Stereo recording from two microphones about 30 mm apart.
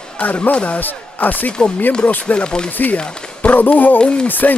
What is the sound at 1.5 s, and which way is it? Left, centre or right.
Speech, left.